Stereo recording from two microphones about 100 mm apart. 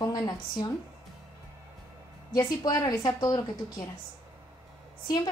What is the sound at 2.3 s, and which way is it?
A woman's voice, 40° left (ahead or behind).